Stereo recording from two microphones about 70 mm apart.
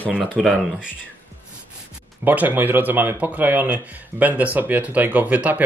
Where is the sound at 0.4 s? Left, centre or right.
Centre.